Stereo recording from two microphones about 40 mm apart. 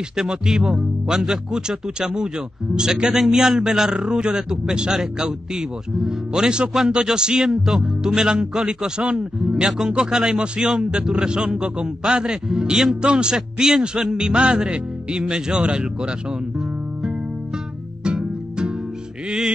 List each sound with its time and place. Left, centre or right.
0.1 s a man's voice: centre
18.0 s music: right